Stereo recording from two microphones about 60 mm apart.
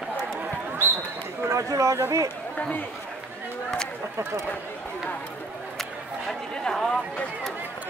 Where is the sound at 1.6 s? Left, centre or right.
Right.